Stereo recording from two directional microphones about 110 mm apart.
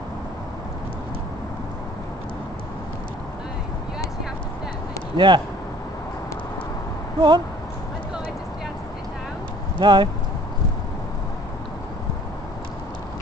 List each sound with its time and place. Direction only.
5.1 s speech: 45° right (ahead or behind)
7.2 s speech: 45° right (ahead or behind)
9.8 s speech: 45° right (ahead or behind)